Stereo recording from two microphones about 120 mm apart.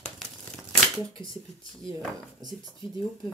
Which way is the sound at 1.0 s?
30° right (ahead or behind).